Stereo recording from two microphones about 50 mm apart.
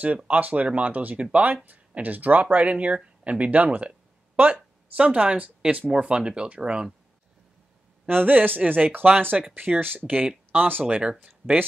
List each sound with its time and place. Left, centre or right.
0.0 s speech: right
4.9 s speech: right
8.1 s speech: right
9.3 s speech: centre
9.8 s speech: right
11.1 s speech: right